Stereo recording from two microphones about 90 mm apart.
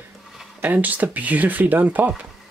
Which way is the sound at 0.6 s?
20° right (ahead or behind).